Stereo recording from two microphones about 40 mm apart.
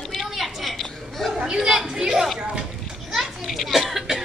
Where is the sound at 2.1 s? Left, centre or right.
Centre.